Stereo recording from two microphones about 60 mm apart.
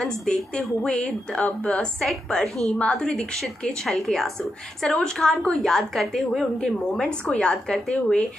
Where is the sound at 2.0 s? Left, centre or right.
Centre.